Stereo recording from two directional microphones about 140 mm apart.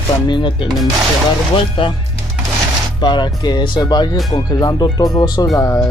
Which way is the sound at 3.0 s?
30° left (ahead or behind).